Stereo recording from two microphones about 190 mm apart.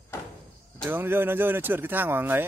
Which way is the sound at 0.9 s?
10° right (ahead or behind).